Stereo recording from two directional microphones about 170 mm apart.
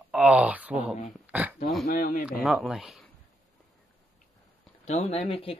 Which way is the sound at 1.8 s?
50° left (ahead or behind).